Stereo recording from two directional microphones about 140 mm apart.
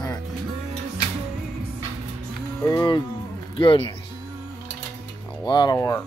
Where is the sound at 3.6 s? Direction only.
40° left (ahead or behind).